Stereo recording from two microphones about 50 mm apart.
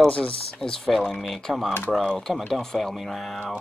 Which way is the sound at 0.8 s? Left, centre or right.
Centre.